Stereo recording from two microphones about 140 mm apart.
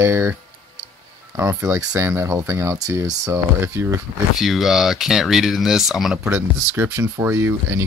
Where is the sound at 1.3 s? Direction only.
20° right (ahead or behind).